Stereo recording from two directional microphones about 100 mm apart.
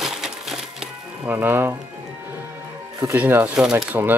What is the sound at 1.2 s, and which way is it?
Speech, 20° right (ahead or behind).